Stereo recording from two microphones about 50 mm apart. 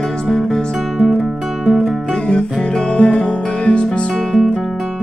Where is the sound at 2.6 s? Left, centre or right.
Centre.